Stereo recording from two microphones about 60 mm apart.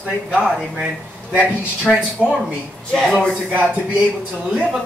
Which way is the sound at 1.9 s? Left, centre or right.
Centre.